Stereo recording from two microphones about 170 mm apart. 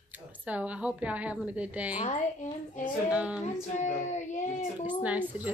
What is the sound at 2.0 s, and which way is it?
Speech, 45° left (ahead or behind).